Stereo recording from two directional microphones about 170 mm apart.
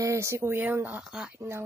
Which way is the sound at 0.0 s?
15° right (ahead or behind).